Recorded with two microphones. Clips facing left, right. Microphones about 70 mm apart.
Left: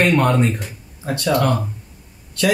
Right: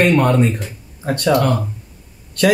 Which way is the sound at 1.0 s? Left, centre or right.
Right.